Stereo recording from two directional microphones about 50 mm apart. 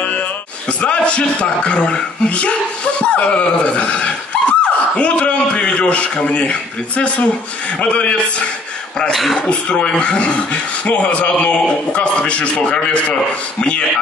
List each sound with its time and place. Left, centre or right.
0.7 s a man's voice: left
9.1 s speech: centre
9.5 s speech: left